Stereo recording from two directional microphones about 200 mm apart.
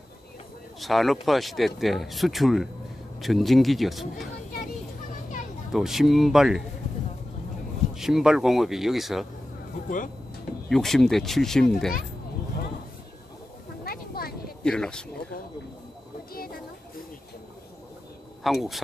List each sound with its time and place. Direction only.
0.7 s speech: centre (ahead or behind)
5.7 s speech: centre (ahead or behind)
7.9 s speech: centre (ahead or behind)
10.7 s speech: centre (ahead or behind)
13.8 s a sound: 50° left (ahead or behind)
14.6 s speech: 5° left (ahead or behind)
18.4 s speech: centre (ahead or behind)